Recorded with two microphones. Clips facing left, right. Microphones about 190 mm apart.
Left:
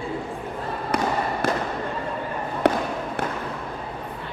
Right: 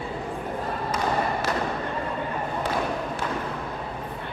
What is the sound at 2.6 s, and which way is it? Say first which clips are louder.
Basketball bounce: left 9 dB; 65° left (ahead or behind).